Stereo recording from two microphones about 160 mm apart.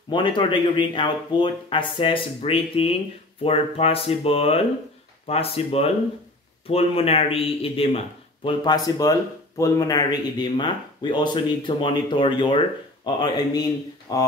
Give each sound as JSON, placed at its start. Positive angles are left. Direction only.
{"t": 0.1, "sound": "speech", "side_deg": 30}
{"t": 8.5, "sound": "speech", "side_deg": 25}